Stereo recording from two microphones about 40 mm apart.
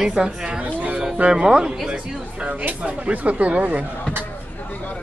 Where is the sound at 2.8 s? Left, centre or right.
Right.